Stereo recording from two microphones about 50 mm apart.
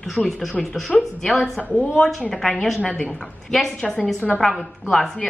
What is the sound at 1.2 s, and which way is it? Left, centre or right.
Speech, centre.